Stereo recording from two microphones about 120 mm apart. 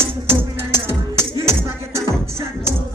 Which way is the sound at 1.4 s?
20° right (ahead or behind).